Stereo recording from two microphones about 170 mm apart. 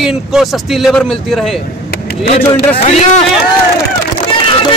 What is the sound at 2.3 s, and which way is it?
Speech, 50° left (ahead or behind).